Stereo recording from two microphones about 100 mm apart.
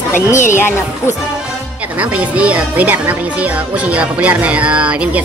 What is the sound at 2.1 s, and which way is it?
Speech, 15° right (ahead or behind).